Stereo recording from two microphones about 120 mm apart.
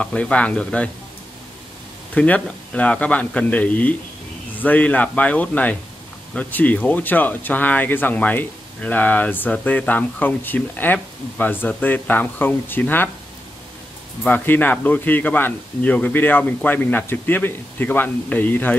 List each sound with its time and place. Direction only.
0.0 s speech: 10° left (ahead or behind)
2.1 s speech: 10° left (ahead or behind)
14.2 s speech: 15° left (ahead or behind)